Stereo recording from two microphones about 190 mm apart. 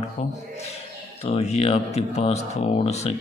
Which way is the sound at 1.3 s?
35° left (ahead or behind).